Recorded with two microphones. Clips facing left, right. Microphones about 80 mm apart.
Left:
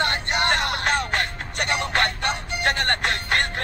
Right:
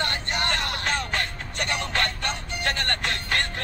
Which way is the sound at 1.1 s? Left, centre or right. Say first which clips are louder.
Left 3 dB; left.